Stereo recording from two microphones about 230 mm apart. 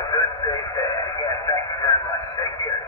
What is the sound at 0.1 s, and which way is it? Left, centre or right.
Radio, centre.